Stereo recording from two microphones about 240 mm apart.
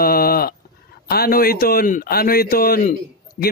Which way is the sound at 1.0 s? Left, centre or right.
Left.